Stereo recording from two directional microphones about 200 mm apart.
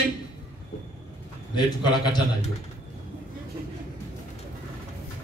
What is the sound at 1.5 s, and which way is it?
Speech, 20° left (ahead or behind).